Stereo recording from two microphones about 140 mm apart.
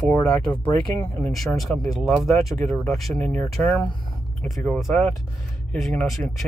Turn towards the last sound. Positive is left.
turn(degrees=0)  # may be behind; listen again after turning